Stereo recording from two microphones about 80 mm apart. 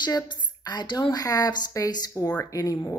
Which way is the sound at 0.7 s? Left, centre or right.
Left.